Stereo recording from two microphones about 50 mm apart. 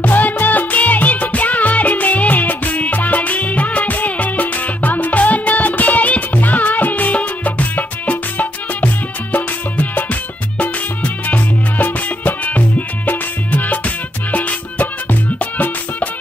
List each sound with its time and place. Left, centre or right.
0.0 s music: left